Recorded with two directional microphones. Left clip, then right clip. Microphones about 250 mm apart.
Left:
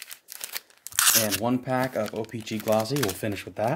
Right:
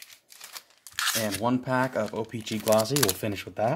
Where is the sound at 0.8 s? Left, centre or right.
Left.